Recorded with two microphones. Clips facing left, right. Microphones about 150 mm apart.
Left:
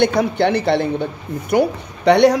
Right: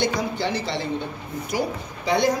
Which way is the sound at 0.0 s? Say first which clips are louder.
Left 9 dB; 60° left (ahead or behind).